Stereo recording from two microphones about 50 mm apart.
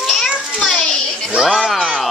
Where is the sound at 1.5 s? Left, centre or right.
Centre.